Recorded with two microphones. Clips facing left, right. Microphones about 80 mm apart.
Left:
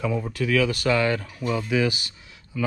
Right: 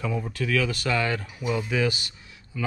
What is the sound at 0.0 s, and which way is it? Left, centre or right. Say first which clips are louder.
Speech: left 3 dB; centre.